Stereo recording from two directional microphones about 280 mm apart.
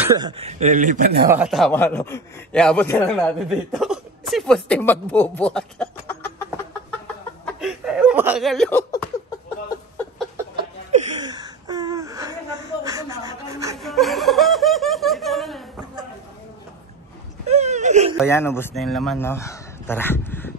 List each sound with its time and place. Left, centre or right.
0.0 s a man's voice: centre; by 1.3 s right
1.3 s speech: centre
7.4 s a sound: centre
10.5 s chuckle: right
11.1 s gasp: centre
12.8 s speech: centre
13.7 s snicker: centre
17.5 s a man's voice: right
18.1 s speech: centre